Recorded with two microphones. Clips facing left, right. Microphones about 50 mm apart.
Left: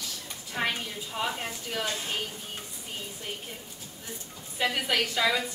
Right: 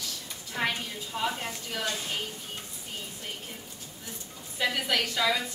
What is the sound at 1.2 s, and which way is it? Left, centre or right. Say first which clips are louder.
Speech: right 1 dB; centre.